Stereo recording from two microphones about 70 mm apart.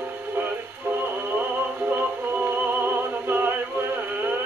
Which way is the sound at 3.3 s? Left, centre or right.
Right.